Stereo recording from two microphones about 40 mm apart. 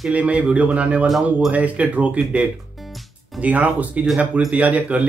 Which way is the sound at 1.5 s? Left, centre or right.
Right.